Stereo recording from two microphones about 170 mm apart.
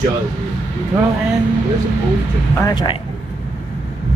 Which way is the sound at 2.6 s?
25° left (ahead or behind).